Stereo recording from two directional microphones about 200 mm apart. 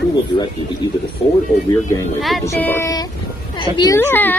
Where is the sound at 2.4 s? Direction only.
10° left (ahead or behind).